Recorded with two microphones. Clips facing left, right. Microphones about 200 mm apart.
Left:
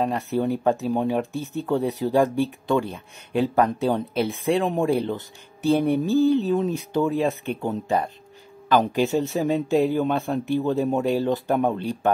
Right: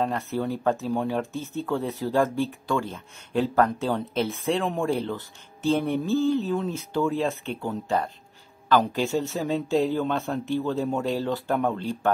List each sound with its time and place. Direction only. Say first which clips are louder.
0.0 s speech: left 3 dB; 15° left (ahead or behind)